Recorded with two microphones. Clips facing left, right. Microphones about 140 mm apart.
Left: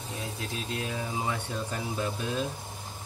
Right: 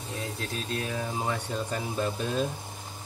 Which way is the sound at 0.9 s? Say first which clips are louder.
Right 1 dB; 5° left (ahead or behind).